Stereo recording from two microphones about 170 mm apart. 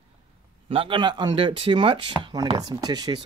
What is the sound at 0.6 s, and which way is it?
Speech, 30° right (ahead or behind).